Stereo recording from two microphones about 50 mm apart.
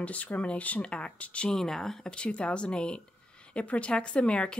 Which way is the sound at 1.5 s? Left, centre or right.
Centre.